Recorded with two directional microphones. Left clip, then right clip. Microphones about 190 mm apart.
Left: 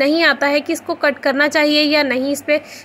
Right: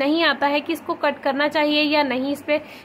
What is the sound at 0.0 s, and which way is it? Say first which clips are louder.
A woman's voice: left 5 dB; 15° left (ahead or behind).